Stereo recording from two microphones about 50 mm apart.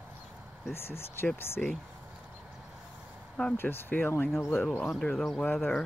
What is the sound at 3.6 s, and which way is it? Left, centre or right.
Speech, left.